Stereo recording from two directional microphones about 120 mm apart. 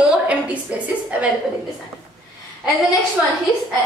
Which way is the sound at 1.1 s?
10° right (ahead or behind).